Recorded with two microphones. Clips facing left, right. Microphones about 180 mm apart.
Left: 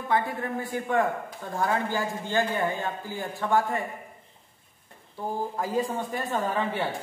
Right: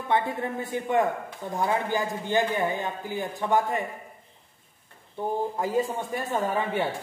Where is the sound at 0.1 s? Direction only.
20° right (ahead or behind).